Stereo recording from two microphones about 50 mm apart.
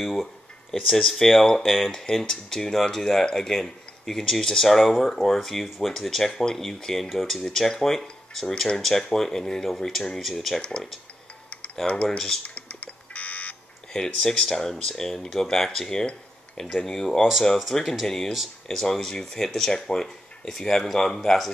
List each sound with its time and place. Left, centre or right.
0.0 s speech: centre
11.9 s speech: left
12.4 s fire alarm: left
13.9 s speech: centre